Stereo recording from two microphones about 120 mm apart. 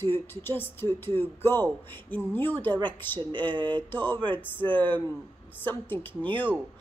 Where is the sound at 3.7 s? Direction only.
15° left (ahead or behind).